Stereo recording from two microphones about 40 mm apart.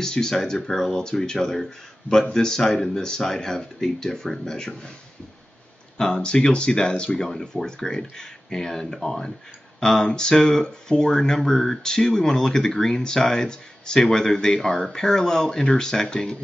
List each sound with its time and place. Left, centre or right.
0.0 s speech: centre
5.9 s speech: centre